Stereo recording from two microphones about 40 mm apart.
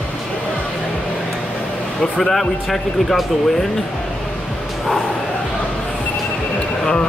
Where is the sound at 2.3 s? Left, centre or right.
Centre.